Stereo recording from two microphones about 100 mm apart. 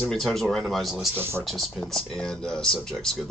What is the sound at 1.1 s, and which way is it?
Speech, 25° right (ahead or behind).